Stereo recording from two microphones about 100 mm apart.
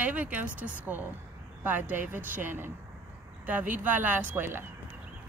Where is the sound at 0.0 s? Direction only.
15° right (ahead or behind).